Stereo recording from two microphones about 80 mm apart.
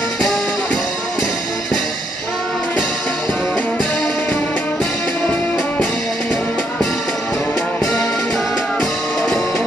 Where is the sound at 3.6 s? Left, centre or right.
Centre.